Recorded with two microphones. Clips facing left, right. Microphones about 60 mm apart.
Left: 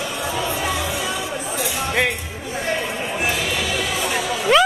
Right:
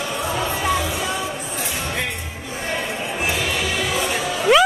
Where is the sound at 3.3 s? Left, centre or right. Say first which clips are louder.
Even; right.